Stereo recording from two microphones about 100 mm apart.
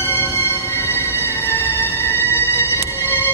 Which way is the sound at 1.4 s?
20° left (ahead or behind).